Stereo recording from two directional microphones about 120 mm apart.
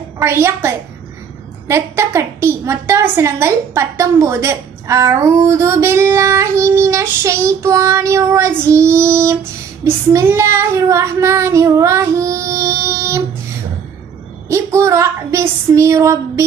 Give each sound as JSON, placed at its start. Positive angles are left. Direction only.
{"t": 0.2, "sound": "a woman's voice", "side_deg": -20}
{"t": 14.5, "sound": "a woman's voice", "side_deg": -25}